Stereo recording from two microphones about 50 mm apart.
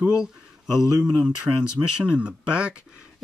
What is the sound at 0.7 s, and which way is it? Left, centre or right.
Speech, centre.